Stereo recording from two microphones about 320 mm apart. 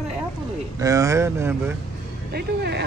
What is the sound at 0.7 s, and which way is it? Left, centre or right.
Speech, centre.